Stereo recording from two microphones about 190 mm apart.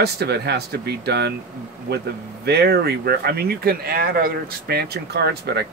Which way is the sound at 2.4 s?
55° right (ahead or behind).